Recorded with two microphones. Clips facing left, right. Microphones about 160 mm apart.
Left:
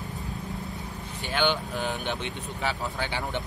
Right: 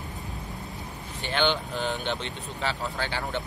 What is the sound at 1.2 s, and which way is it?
A man's voice, 10° left (ahead or behind).